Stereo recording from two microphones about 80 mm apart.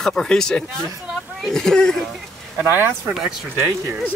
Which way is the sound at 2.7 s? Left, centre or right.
Right.